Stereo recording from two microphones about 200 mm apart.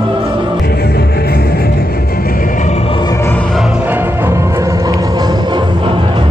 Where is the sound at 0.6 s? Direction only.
55° left (ahead or behind).